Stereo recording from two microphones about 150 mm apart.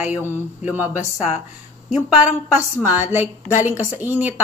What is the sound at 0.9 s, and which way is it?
Speech, 45° left (ahead or behind).